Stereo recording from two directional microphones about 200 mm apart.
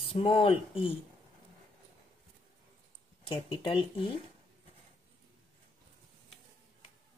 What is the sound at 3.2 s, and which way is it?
Speech, 25° left (ahead or behind).